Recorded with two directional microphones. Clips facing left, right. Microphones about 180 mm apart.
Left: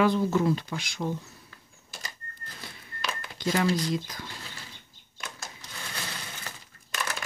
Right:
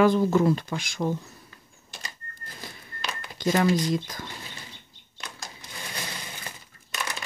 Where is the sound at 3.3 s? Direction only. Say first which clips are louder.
Right 4 dB; 50° right (ahead or behind).